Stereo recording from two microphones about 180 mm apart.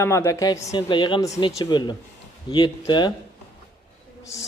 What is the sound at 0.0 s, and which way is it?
A man's voice, 15° left (ahead or behind).